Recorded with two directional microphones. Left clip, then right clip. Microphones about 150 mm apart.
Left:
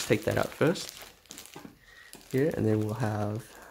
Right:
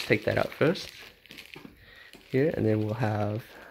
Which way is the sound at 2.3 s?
5° right (ahead or behind).